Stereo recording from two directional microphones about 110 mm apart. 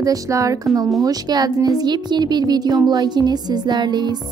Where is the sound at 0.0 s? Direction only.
30° right (ahead or behind).